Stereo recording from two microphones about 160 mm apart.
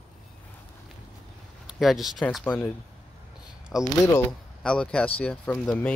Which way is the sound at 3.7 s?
5° right (ahead or behind).